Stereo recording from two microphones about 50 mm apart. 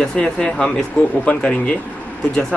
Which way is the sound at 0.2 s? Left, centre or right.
Centre.